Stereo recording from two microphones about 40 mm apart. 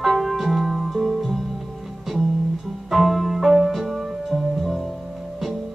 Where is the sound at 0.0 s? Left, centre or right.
Centre.